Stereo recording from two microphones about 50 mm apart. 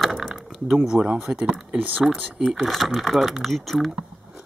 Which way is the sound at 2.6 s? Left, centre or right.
Centre.